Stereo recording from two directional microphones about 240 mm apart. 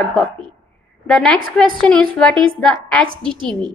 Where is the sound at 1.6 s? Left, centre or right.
Centre.